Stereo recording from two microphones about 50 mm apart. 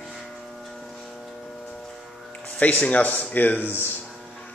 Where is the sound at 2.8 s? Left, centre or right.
Left.